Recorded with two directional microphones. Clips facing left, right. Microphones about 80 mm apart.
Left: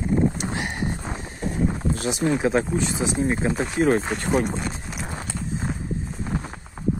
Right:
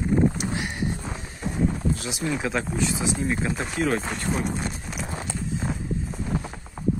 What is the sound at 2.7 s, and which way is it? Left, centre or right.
Speech, left.